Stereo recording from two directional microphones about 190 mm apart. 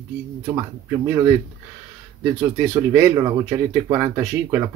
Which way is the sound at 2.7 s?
15° right (ahead or behind).